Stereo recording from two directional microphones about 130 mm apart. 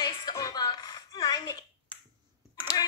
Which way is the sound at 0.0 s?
35° left (ahead or behind).